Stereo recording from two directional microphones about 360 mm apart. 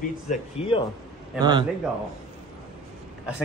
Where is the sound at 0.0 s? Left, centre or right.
Centre.